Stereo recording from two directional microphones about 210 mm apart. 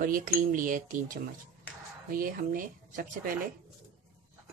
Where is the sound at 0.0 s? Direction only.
40° right (ahead or behind).